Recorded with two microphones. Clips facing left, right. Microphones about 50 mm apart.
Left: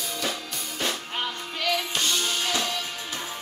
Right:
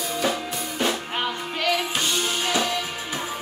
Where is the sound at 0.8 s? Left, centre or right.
Centre.